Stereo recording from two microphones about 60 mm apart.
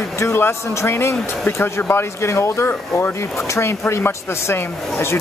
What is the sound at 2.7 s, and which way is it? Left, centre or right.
Speech, left.